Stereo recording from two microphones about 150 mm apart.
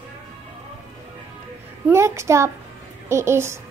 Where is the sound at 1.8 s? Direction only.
20° right (ahead or behind).